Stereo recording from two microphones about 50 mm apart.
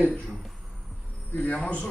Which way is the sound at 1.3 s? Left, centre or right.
Left.